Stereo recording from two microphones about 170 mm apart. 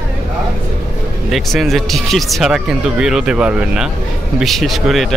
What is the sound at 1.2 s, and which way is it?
A man's voice, centre (ahead or behind).